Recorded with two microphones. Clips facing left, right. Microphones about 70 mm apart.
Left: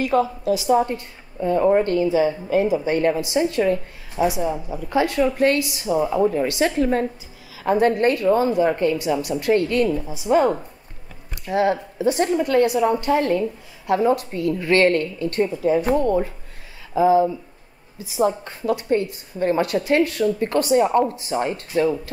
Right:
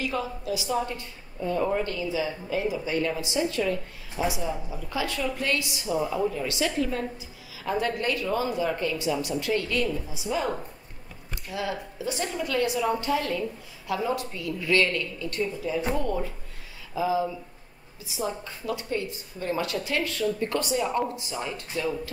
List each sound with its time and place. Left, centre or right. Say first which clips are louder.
0.0 s a woman's voice: left 10 dB; left
9.9 s a woman's voice: left 11 dB; left